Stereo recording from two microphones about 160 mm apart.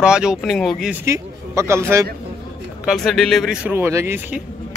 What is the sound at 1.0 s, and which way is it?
Speech, 20° right (ahead or behind).